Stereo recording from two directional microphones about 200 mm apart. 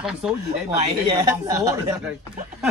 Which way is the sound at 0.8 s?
20° right (ahead or behind).